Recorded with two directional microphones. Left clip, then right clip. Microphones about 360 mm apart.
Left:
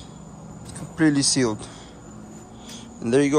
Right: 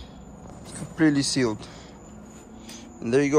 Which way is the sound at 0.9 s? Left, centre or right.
Centre.